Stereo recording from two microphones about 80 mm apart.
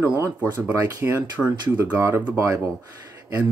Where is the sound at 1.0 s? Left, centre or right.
Right.